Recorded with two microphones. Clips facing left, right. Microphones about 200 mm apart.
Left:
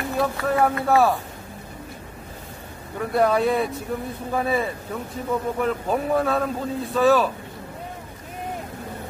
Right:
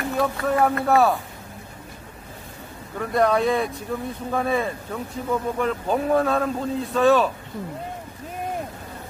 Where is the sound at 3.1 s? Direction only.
5° left (ahead or behind).